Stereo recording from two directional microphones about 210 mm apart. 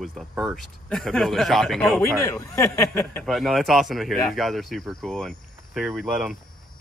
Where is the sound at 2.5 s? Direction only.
15° left (ahead or behind).